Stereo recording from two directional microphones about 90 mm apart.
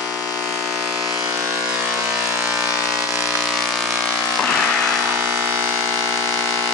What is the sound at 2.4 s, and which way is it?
Vehicle, 5° right (ahead or behind).